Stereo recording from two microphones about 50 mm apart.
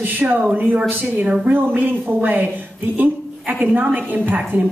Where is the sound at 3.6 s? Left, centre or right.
Right.